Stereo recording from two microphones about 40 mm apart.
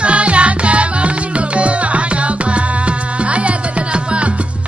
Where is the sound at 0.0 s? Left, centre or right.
Right.